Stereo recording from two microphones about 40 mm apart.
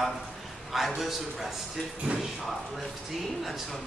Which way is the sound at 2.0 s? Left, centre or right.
Right.